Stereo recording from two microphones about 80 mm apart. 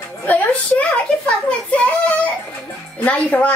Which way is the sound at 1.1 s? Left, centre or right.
Centre.